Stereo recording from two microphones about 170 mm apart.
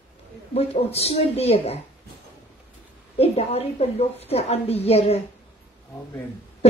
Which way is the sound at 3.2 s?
35° left (ahead or behind).